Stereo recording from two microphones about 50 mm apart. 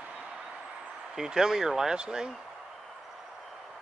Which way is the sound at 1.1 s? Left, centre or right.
Centre.